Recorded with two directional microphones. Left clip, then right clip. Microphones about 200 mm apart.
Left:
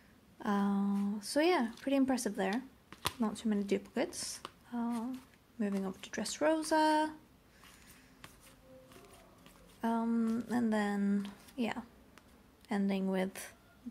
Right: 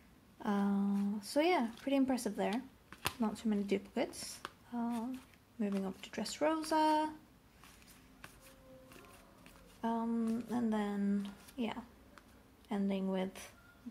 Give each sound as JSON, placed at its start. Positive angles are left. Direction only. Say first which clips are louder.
{"t": 0.4, "sound": "speech", "louder": "left 2 dB", "side_deg": 15}
{"t": 4.6, "sound": "humming", "louder": "left 2 dB", "side_deg": 10}
{"t": 5.6, "sound": "speech", "louder": "left 1 dB", "side_deg": 15}
{"t": 9.8, "sound": "speech", "louder": "left 3 dB", "side_deg": 20}